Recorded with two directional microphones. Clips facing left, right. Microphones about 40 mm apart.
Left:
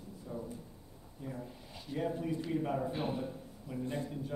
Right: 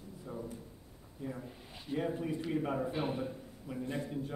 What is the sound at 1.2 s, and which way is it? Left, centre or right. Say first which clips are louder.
A man's voice: right 1 dB; centre.